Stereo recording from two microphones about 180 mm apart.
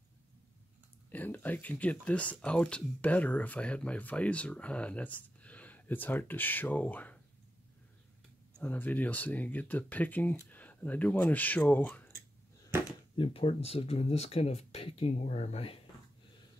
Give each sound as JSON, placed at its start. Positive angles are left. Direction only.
{"t": 1.1, "sound": "speech", "side_deg": 10}
{"t": 8.5, "sound": "speech", "side_deg": 10}
{"t": 13.1, "sound": "speech", "side_deg": 30}